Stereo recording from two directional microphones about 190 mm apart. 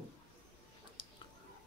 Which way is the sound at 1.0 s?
25° left (ahead or behind).